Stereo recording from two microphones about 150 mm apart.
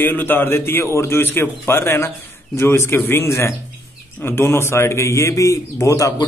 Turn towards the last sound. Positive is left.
turn(degrees=20)  # may be behind; listen again after turning